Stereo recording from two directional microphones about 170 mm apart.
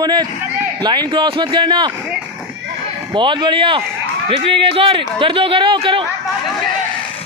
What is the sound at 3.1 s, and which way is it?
A man's voice, 30° right (ahead or behind).